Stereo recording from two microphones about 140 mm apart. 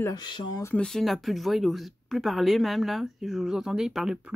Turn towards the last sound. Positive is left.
turn(degrees=-5)  # may be behind; listen again after turning